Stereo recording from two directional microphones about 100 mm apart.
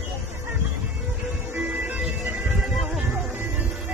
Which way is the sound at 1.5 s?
15° right (ahead or behind).